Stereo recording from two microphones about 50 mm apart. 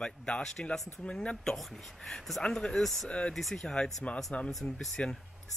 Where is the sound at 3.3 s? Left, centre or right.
Centre.